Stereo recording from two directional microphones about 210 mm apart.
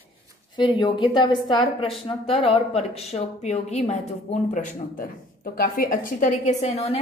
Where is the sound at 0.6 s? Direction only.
20° left (ahead or behind).